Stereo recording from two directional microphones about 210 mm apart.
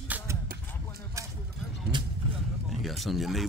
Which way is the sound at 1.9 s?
20° right (ahead or behind).